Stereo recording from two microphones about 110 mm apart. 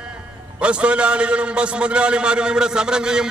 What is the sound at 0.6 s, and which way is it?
A man's voice, 10° right (ahead or behind).